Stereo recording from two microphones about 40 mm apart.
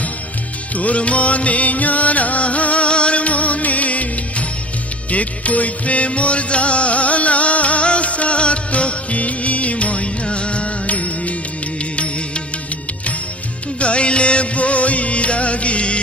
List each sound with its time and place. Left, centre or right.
0.7 s music: left
5.1 s music: left
13.7 s music: left